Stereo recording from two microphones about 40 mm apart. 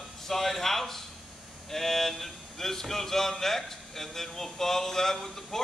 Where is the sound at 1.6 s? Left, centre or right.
Centre.